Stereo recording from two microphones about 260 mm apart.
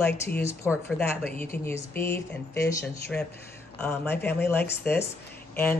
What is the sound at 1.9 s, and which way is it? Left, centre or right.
Speech, centre.